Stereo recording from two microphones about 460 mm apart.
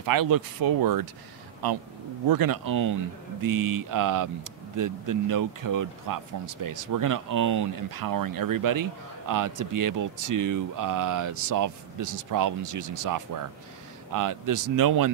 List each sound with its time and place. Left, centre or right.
0.0 s speech: right
2.2 s speech: right